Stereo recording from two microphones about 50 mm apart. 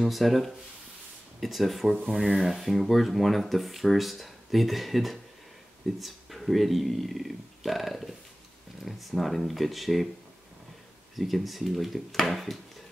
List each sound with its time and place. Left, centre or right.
0.0 s speech: centre
11.1 s speech: centre